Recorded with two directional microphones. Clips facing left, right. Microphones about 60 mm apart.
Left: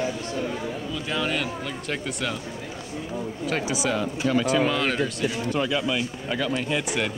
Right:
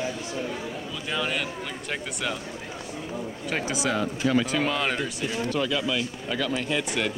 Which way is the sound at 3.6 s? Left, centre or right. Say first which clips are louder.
Right 2 dB; centre.